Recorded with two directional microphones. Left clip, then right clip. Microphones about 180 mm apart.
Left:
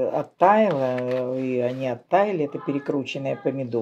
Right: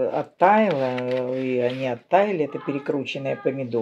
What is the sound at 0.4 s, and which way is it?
Speech, 5° left (ahead or behind).